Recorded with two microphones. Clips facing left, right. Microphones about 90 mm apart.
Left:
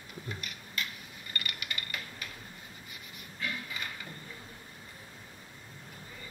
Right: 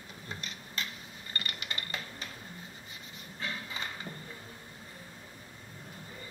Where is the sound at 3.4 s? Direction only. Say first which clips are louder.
Even; 30° right (ahead or behind).